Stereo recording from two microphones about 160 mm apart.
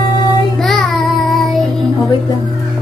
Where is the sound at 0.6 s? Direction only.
Centre (ahead or behind).